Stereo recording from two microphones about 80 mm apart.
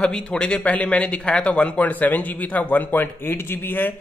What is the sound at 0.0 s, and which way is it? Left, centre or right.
Speech, centre.